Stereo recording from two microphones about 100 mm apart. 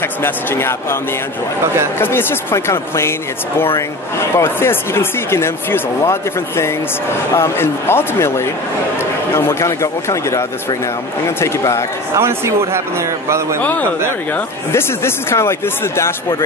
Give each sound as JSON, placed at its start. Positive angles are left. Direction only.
{"t": 0.2, "sound": "speech", "side_deg": 25}
{"t": 2.0, "sound": "speech", "side_deg": 20}
{"t": 12.2, "sound": "speech", "side_deg": -25}
{"t": 13.6, "sound": "speech", "side_deg": 15}